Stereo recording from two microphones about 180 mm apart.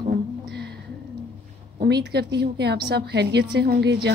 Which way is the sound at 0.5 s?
65° right (ahead or behind).